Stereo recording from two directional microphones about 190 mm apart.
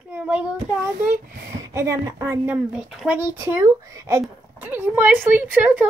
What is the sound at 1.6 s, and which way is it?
A woman's voice, 15° right (ahead or behind).